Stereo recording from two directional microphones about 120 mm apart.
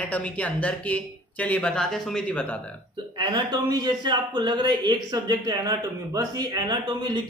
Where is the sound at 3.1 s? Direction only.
35° right (ahead or behind).